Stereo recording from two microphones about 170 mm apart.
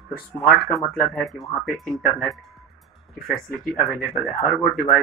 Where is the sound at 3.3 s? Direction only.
Centre (ahead or behind).